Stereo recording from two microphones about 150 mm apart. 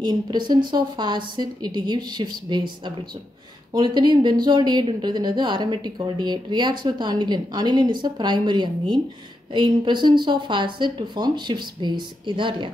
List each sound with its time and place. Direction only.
0.0 s speech: 30° right (ahead or behind)